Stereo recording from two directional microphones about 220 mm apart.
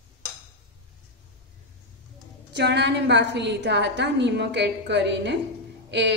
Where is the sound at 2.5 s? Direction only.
50° right (ahead or behind).